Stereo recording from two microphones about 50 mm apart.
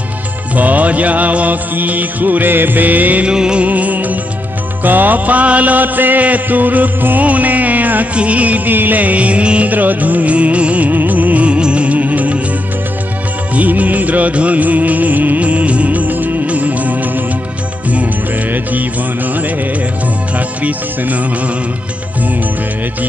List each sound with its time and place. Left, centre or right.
0.6 s music: right
3.3 s music: centre
3.6 s music: right
9.7 s music: right
13.6 s music: right
20.3 s speech: right